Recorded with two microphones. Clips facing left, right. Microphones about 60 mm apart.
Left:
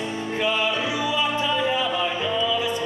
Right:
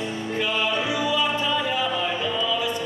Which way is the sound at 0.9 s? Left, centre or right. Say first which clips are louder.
Right 1 dB; centre.